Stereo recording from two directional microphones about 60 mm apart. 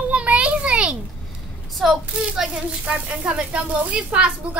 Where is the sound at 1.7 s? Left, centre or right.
Centre.